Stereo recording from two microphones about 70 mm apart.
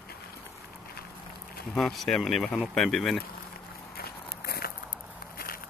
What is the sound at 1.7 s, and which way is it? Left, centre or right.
Speech, centre.